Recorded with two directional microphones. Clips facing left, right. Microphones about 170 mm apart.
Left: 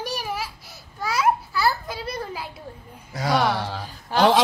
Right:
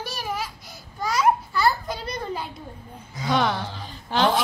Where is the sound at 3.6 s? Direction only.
80° left.